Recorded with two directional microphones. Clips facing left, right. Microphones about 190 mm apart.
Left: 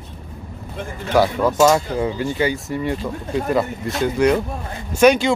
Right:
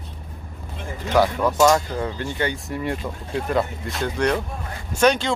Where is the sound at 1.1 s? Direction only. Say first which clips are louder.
Left 2 dB; 10° left (ahead or behind).